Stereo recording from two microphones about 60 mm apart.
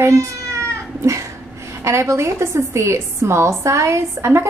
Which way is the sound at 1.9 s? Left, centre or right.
Right.